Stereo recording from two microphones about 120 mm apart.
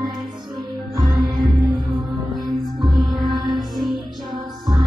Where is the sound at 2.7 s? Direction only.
40° right (ahead or behind).